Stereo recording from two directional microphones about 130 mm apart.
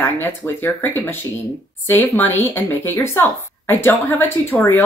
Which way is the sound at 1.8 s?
15° left (ahead or behind).